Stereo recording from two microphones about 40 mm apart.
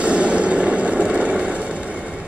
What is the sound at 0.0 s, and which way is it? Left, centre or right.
Vehicle, right.